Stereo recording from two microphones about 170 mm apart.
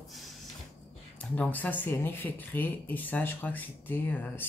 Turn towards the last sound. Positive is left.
turn(degrees=10)  # may be behind; listen again after turning